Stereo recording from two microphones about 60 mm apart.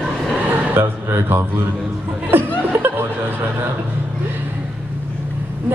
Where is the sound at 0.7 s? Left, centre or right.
Right.